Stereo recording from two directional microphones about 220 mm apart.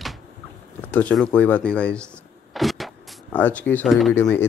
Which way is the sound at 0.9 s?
5° left (ahead or behind).